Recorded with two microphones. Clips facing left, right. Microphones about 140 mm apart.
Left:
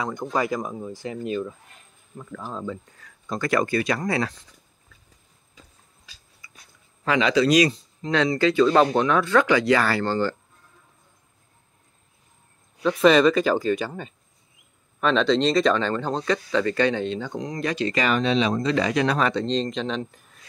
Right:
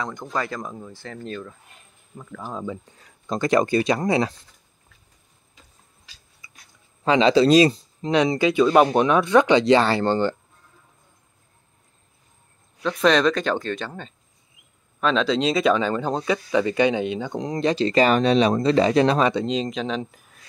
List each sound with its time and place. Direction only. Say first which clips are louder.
0.0 s speech: left 3 dB; 15° left (ahead or behind)
2.1 s speech: right 1 dB; 5° right (ahead or behind)
2.6 s speech: right 1 dB; 20° right (ahead or behind)
6.4 s a sound: left 1 dB; 25° right (ahead or behind)
7.1 s speech: right 4 dB; 30° right (ahead or behind)
8.1 s speech: right 2 dB; 15° right (ahead or behind)
12.8 s speech: left 2 dB; 5° left (ahead or behind); by 17.4 s 15° right (ahead or behind)
17.4 s speech: right 6 dB; 30° right (ahead or behind)
19.4 s speech: even; 5° right (ahead or behind)